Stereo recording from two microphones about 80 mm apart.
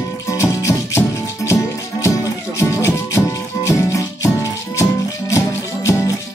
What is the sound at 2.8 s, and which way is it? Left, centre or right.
Music, left.